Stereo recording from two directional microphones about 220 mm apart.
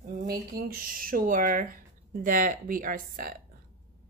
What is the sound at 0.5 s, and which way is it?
Speech, 40° right (ahead or behind).